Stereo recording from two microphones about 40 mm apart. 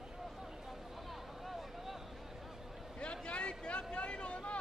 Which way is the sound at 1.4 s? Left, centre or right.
Centre.